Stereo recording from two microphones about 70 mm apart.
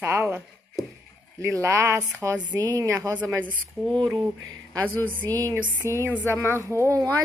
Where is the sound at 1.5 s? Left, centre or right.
Right.